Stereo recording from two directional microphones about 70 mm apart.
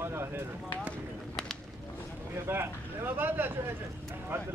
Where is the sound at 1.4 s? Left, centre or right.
Centre.